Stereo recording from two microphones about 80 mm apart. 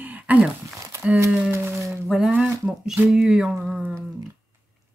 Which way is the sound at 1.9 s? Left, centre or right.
Centre.